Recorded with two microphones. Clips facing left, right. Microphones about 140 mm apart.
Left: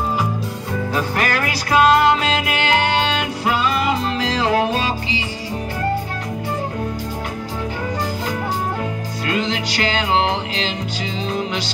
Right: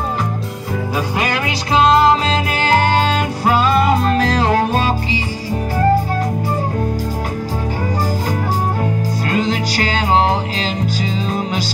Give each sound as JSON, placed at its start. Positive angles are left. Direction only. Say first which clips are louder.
{"t": 0.9, "sound": "music", "louder": "right 1 dB", "side_deg": -15}
{"t": 9.3, "sound": "music", "louder": "right 2 dB", "side_deg": -40}